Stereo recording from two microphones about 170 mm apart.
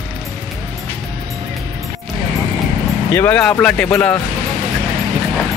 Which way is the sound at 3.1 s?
10° left (ahead or behind).